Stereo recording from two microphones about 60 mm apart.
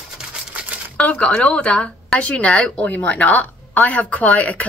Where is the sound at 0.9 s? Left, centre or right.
Left.